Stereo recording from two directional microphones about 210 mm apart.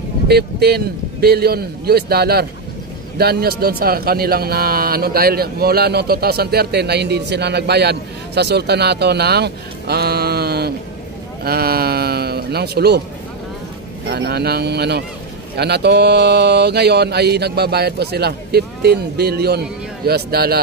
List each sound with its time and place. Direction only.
0.3 s a man's voice: 50° right (ahead or behind)
14.0 s a man's voice: 50° right (ahead or behind)